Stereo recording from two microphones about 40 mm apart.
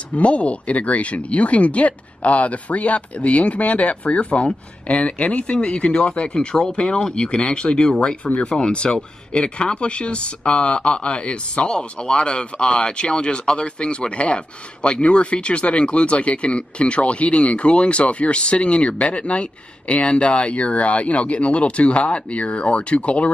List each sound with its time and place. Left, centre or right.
0.1 s speech: left; by 7.2 s centre
7.2 s speech: left